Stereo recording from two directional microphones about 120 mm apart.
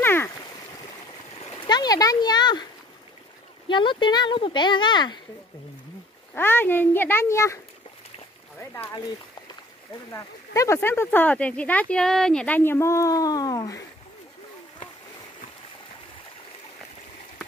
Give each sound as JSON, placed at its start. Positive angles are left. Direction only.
{"t": 0.0, "sound": "stream", "side_deg": 20}
{"t": 1.7, "sound": "a sound", "side_deg": 35}
{"t": 3.6, "sound": "speech", "side_deg": 40}
{"t": 6.3, "sound": "a child's voice", "side_deg": 15}
{"t": 10.1, "sound": "speech", "side_deg": 25}